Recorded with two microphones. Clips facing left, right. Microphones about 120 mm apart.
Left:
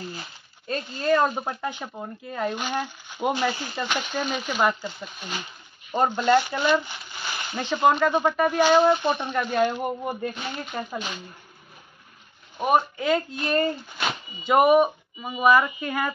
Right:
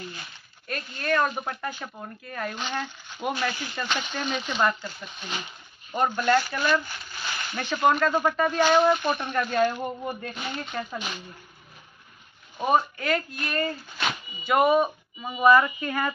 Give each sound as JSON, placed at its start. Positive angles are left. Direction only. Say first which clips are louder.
{"t": 0.0, "sound": "speech", "louder": "left 3 dB", "side_deg": 30}
{"t": 3.8, "sound": "speech", "louder": "left 2 dB", "side_deg": 5}
{"t": 8.7, "sound": "speech", "louder": "left 2 dB", "side_deg": 25}
{"t": 9.5, "sound": "speech", "louder": "left 2 dB", "side_deg": 15}
{"t": 12.5, "sound": "speech", "louder": "left 1 dB", "side_deg": 10}